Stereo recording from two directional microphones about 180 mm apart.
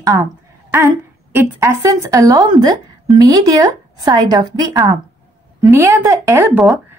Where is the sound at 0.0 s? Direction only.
20° right (ahead or behind).